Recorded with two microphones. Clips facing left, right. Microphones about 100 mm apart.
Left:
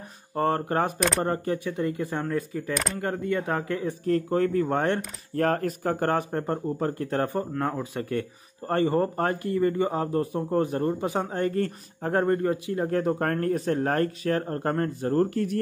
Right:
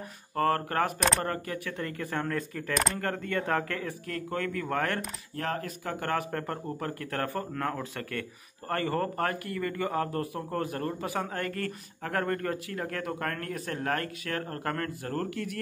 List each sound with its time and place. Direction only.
0.4 s speech: 20° left (ahead or behind)
0.9 s speech: centre (ahead or behind)
1.2 s speech: 25° left (ahead or behind)
4.0 s speech: 30° left (ahead or behind)
5.3 s speech: 45° left (ahead or behind)
6.3 s speech: 25° left (ahead or behind)
15.2 s speech: 35° left (ahead or behind)